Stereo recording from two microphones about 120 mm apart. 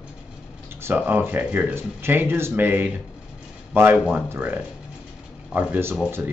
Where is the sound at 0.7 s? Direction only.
20° right (ahead or behind).